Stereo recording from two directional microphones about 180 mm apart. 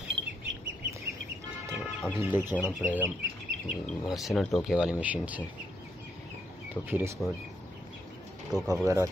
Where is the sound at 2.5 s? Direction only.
10° right (ahead or behind).